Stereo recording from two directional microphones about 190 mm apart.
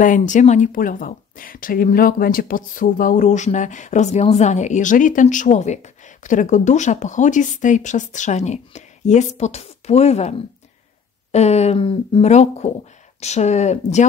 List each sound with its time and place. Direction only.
0.0 s speech: 40° left (ahead or behind)